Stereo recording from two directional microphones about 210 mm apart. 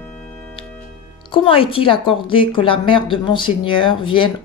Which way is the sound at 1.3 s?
25° left (ahead or behind).